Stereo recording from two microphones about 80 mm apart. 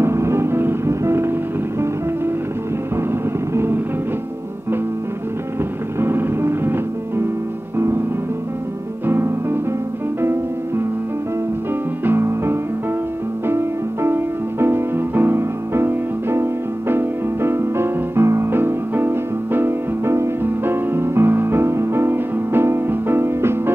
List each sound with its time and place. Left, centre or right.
0.0 s music: right
3.5 s music: right
5.9 s music: right
9.0 s music: right
12.0 s music: right